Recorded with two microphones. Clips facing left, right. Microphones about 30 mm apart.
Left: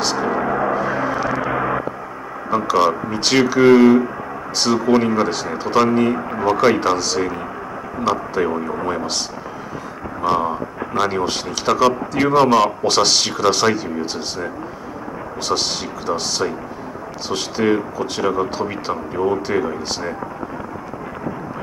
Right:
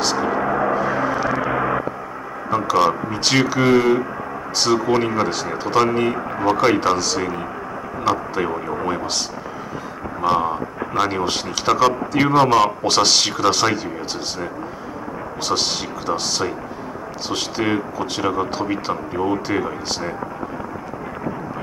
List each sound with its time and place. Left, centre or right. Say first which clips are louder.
0.0 s gong: even; centre
2.5 s a sound: left 1 dB; centre
4.6 s speech: left 2 dB; centre
10.2 s speech: even; centre
17.3 s speech: left 3 dB; centre